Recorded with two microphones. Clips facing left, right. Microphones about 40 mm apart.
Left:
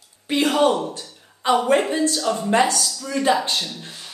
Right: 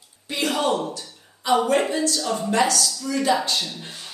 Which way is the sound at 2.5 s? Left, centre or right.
Left.